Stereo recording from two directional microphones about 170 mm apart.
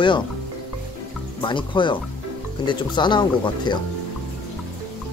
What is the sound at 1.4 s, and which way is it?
Speech, 30° left (ahead or behind).